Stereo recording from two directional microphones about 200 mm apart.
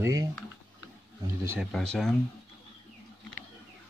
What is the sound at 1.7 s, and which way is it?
Speech, centre (ahead or behind).